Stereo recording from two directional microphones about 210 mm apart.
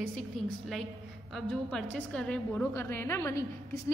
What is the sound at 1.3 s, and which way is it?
A woman's voice, 5° left (ahead or behind).